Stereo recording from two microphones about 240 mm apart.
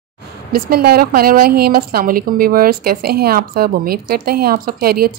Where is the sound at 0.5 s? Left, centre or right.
Right.